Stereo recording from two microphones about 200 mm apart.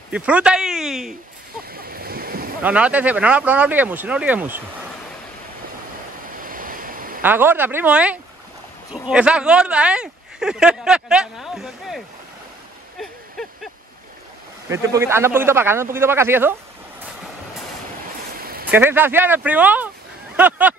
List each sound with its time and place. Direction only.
0.1 s speech: 5° right (ahead or behind)
1.7 s waves: 50° right (ahead or behind)
2.6 s speech: 5° right (ahead or behind)
6.3 s waves: 45° right (ahead or behind)
7.2 s speech: 10° right (ahead or behind)
13.0 s a sound: centre (ahead or behind)
14.7 s speech: 15° right (ahead or behind)
18.4 s a sound: 50° right (ahead or behind)
18.7 s speech: 10° right (ahead or behind)